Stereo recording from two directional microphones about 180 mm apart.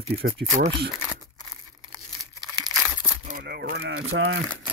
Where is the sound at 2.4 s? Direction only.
25° right (ahead or behind).